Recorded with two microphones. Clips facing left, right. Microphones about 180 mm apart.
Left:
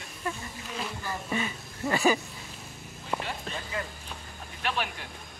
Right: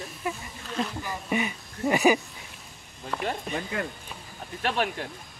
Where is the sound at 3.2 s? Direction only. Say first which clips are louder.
Right 6 dB; 60° right (ahead or behind).